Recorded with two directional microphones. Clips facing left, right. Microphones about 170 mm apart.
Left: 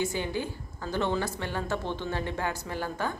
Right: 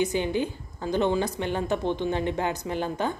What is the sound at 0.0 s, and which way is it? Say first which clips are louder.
A woman's voice: right 5 dB; 20° right (ahead or behind).